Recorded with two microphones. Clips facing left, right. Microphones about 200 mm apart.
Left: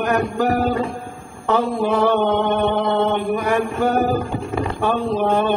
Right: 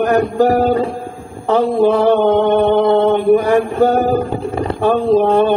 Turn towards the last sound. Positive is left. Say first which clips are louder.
# right 7 dB
turn(degrees=-35)  # may be behind; listen again after turning